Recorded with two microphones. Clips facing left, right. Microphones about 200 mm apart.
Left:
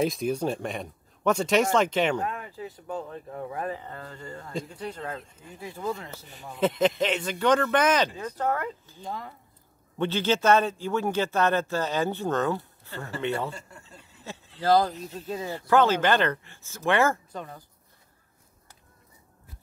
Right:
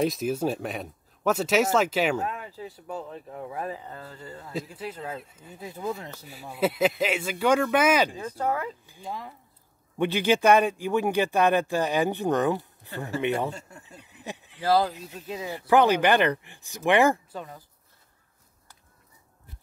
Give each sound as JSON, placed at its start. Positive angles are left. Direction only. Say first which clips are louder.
{"t": 0.0, "sound": "speech", "louder": "right 1 dB", "side_deg": 0}
{"t": 17.3, "sound": "speech", "louder": "even", "side_deg": -5}